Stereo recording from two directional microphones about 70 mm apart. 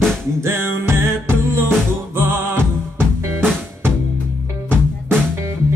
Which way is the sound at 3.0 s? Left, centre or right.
Right.